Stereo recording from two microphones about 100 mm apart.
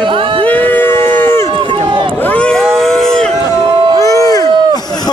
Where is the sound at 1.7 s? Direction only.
50° right (ahead or behind).